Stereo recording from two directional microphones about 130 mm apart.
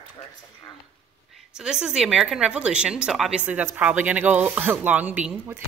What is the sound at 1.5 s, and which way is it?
Speech, 5° right (ahead or behind).